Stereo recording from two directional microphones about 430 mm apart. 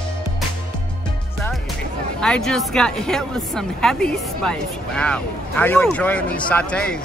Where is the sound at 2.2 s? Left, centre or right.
Centre.